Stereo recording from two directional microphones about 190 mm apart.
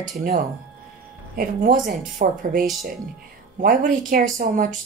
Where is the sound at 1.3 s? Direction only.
50° right (ahead or behind).